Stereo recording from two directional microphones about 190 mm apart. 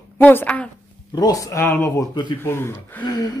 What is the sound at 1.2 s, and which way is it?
Speech, 20° left (ahead or behind).